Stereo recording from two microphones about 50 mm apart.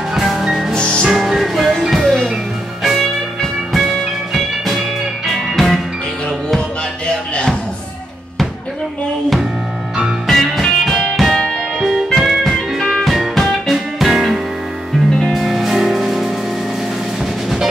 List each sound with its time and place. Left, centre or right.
0.1 s music: centre
0.7 s music: centre
1.1 s music: centre
10.2 s music: centre
15.1 s music: centre
15.4 s music: centre